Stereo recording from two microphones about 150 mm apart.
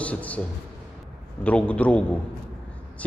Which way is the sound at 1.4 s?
10° left (ahead or behind).